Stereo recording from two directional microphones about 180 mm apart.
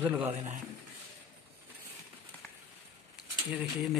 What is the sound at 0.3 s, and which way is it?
Speech, 35° right (ahead or behind).